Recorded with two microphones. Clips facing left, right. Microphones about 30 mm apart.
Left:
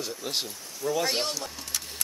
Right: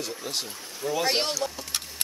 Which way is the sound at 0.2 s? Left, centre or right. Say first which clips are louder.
Left 1 dB; centre.